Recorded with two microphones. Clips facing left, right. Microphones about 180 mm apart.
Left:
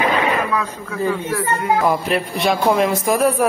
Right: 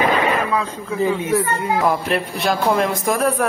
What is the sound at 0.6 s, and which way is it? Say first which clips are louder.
Speech: right 2 dB; 20° right (ahead or behind).